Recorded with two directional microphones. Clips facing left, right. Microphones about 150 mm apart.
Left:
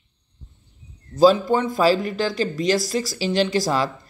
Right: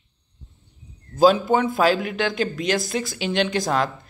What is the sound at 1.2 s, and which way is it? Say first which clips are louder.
Speech: left 1 dB; centre (ahead or behind).